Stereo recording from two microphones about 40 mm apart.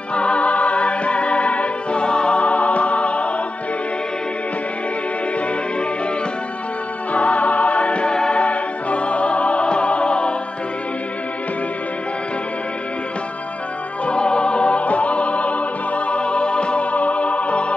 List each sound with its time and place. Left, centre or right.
0.1 s music: left
7.1 s music: left
14.0 s music: left